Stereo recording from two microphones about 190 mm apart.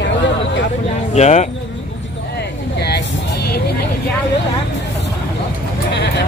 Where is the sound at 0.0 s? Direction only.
70° left (ahead or behind).